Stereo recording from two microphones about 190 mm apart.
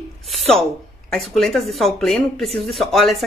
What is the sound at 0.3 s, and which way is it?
A woman's voice, centre (ahead or behind).